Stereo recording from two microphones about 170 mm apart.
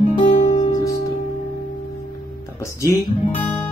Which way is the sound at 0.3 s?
40° left (ahead or behind).